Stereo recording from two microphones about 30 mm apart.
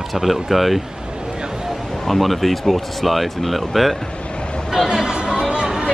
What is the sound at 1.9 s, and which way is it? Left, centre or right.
Speech, centre.